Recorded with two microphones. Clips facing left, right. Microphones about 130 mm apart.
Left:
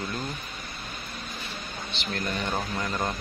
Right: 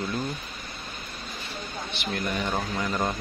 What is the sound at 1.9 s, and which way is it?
Speech, 15° right (ahead or behind).